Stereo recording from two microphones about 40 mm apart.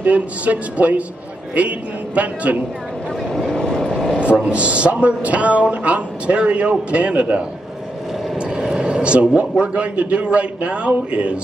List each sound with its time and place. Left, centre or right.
0.0 s a man's voice: right
2.1 s a man's voice: right
3.4 s vehicle: centre
4.2 s a man's voice: right
8.5 s speech: centre
8.8 s a man's voice: right